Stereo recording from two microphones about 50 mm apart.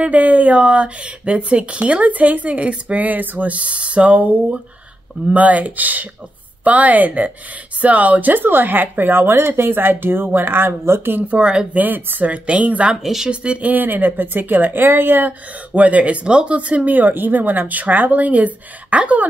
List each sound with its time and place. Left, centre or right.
0.0 s speech: right
11.2 s speech: right
11.7 s speech: right
12.9 s speech: centre
13.3 s speech: right